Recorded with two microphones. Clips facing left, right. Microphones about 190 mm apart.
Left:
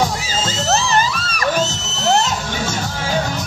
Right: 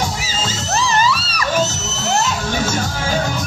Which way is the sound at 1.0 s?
50° left (ahead or behind).